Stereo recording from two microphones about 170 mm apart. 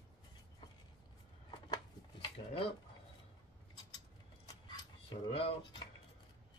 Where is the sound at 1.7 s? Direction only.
25° left (ahead or behind).